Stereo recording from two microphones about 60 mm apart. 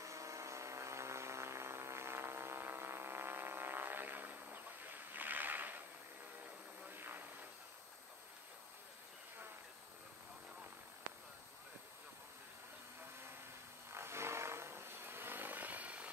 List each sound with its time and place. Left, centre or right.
0.0 s a sound: right
6.9 s vehicle: right
13.9 s vehicle: right